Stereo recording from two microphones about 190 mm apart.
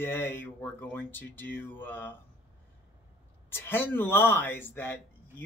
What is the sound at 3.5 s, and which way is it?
Speech, 10° left (ahead or behind).